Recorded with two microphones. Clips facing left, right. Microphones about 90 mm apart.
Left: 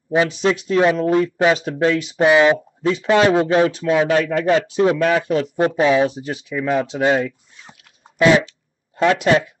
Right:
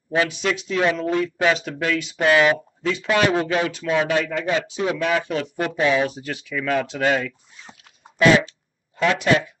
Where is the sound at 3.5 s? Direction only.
35° left (ahead or behind).